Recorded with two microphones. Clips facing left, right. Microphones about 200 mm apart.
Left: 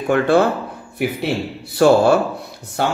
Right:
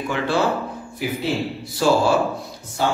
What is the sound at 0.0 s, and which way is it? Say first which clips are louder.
Speech: left 7 dB; 55° left (ahead or behind).